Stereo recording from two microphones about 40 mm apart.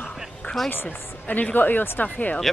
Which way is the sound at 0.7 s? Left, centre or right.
Left.